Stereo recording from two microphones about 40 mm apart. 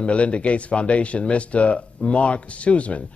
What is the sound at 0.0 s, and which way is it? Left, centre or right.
Speech, left.